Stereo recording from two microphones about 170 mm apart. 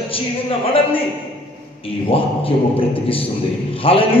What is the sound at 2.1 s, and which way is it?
A man's voice, 35° left (ahead or behind).